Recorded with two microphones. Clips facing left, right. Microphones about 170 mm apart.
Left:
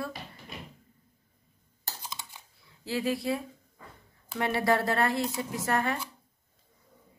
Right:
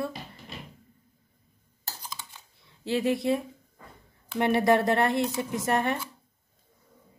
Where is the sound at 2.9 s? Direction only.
20° right (ahead or behind).